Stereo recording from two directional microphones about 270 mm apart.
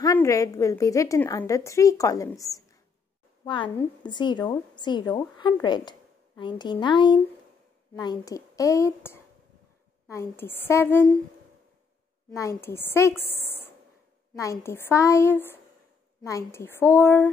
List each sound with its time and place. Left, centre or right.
0.0 s a woman's voice: centre
12.3 s a woman's voice: centre